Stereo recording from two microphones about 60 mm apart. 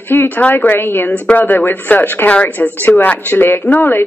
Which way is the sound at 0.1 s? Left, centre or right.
Left.